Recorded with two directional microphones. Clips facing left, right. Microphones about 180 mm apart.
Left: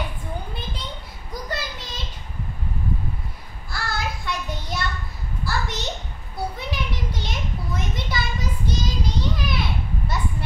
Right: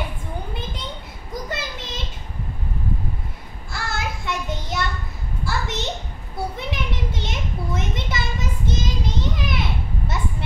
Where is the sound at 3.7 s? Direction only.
25° right (ahead or behind).